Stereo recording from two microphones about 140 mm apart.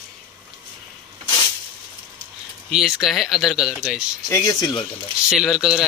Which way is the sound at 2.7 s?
Centre (ahead or behind).